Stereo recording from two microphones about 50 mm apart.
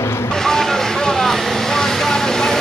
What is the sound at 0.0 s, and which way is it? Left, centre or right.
Vehicle, left.